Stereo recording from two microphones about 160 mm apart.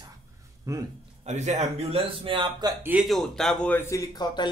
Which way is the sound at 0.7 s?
20° right (ahead or behind).